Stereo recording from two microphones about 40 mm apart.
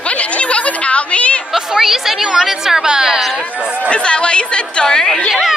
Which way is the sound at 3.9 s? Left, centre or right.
Left.